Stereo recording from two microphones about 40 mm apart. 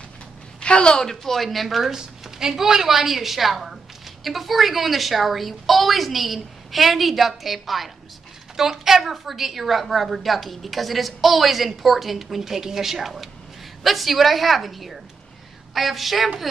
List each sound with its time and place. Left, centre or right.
0.6 s a woman's voice: left
1.0 s a woman's voice: centre
1.9 s a woman's voice: centre